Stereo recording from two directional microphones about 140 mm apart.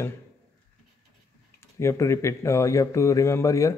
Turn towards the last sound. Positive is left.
turn(degrees=25)  # may be behind; listen again after turning